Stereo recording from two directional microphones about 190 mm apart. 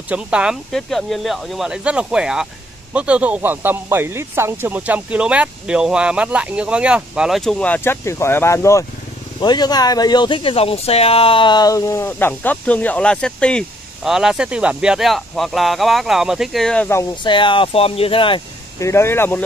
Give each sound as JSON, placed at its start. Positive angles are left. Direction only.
{"t": 0.1, "sound": "speech", "side_deg": -5}
{"t": 17.2, "sound": "speech", "side_deg": 25}
{"t": 18.8, "sound": "speech", "side_deg": 15}